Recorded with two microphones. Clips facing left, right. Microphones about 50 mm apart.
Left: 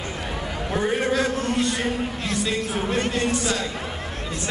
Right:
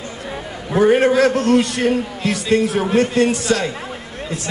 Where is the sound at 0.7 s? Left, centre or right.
Right.